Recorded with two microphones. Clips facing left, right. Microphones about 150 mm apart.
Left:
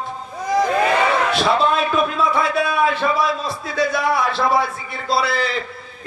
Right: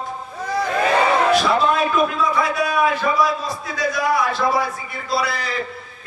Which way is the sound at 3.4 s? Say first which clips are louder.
Left 3 dB; 30° left (ahead or behind).